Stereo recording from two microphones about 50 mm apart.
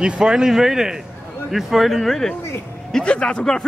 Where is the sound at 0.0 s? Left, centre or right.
Centre.